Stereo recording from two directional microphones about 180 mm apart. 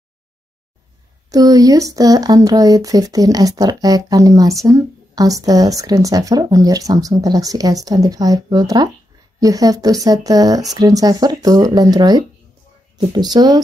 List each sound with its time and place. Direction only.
1.3 s speech: 20° right (ahead or behind)